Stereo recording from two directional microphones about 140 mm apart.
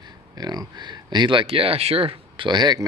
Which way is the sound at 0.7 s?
30° right (ahead or behind).